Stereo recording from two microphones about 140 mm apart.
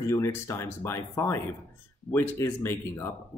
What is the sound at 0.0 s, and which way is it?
Speech, 20° left (ahead or behind).